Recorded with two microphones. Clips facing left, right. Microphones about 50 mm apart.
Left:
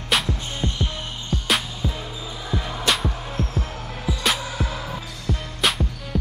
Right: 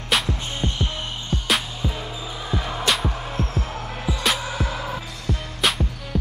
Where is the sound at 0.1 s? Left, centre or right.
Centre.